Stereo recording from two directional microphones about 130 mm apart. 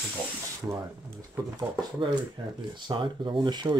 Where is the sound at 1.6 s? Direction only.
35° right (ahead or behind).